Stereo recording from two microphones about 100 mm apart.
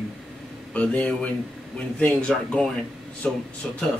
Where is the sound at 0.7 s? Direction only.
10° left (ahead or behind).